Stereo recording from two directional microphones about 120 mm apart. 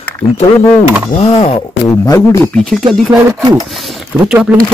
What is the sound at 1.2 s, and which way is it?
Speech, 60° left (ahead or behind).